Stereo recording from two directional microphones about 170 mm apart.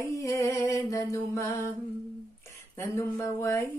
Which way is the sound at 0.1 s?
20° left (ahead or behind).